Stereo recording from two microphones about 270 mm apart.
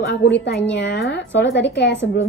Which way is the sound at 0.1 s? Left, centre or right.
Left.